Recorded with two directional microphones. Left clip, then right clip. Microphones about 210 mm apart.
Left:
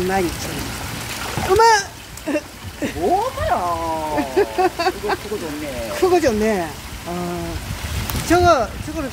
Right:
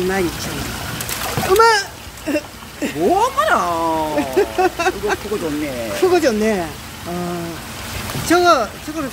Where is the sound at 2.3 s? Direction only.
Centre (ahead or behind).